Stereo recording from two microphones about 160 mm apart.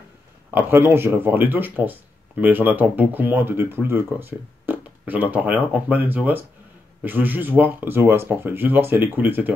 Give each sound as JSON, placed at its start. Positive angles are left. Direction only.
{"t": 0.5, "sound": "speech", "side_deg": -10}